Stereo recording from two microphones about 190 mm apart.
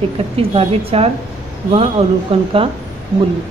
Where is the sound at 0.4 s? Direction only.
30° right (ahead or behind).